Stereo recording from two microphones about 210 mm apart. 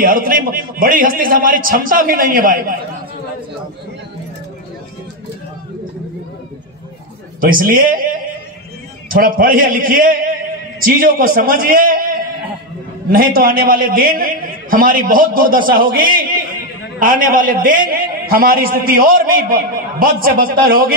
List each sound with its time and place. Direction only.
0.0 s a man's voice: 45° right (ahead or behind)
7.3 s a man's voice: 40° right (ahead or behind)
9.1 s a man's voice: 45° right (ahead or behind)